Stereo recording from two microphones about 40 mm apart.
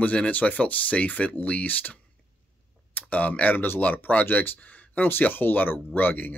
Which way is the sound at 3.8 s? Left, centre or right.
Left.